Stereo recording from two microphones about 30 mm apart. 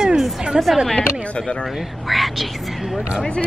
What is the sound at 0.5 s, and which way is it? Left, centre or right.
Speech, centre.